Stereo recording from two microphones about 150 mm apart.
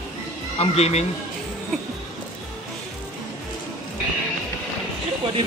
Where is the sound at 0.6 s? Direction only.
45° left (ahead or behind).